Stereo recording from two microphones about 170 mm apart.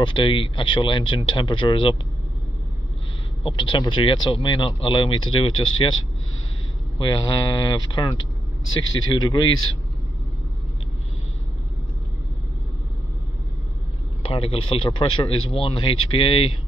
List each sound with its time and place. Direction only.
0.0 s speech: 30° left (ahead or behind)
3.4 s speech: 30° left (ahead or behind)
7.0 s speech: 25° left (ahead or behind)
14.2 s speech: 35° left (ahead or behind)